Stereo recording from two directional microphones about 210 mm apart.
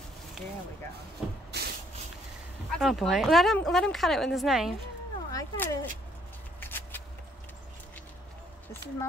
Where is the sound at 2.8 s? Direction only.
Centre (ahead or behind).